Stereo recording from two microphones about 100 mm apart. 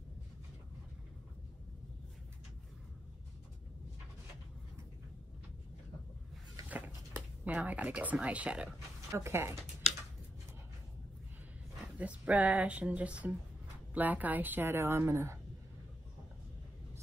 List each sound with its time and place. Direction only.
7.4 s speech: 15° right (ahead or behind)
9.1 s a woman's voice: 25° right (ahead or behind)
12.0 s a woman's voice: 15° right (ahead or behind)